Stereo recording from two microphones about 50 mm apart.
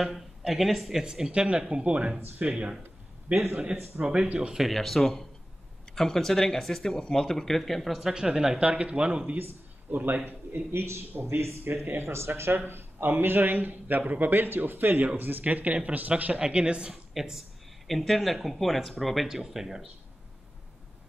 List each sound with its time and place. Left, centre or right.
0.0 s speech: centre
1.0 s speech: centre
2.1 s a man's voice: right
4.0 s speech: centre
4.6 s speech: centre
8.1 s speech: centre
9.4 s a man's voice: right
11.6 s speech: right
12.0 s speech: right
12.4 s a man's voice: right
16.3 s speech: centre
17.1 s speech: centre